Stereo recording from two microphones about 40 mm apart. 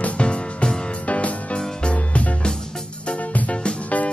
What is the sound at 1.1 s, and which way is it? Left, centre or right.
Music, left.